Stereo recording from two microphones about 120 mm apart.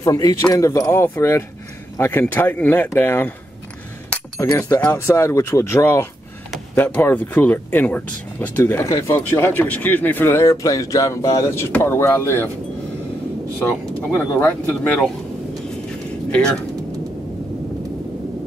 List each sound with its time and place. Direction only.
0.0 s speech: 30° left (ahead or behind)
4.4 s speech: 25° left (ahead or behind)
4.7 s speech: 15° left (ahead or behind)
14.1 s speech: 15° left (ahead or behind)
16.3 s speech: 10° left (ahead or behind)